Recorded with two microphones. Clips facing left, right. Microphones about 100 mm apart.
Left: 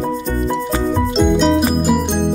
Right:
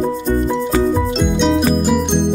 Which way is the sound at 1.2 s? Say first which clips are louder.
Left 3 dB; centre (ahead or behind).